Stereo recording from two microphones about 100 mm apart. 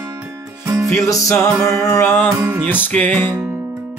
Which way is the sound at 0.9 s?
30° left (ahead or behind).